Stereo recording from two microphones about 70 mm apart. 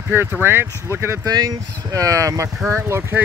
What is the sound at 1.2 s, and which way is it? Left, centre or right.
Speech, right.